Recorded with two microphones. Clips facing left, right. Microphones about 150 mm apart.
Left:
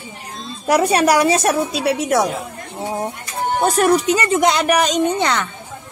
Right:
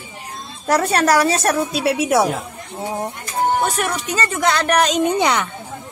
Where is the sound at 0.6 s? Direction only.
15° left (ahead or behind).